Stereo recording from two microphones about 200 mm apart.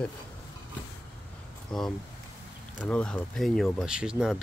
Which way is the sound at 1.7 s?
5° left (ahead or behind).